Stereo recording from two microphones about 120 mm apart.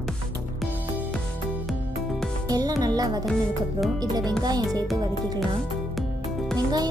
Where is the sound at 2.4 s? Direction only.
30° right (ahead or behind).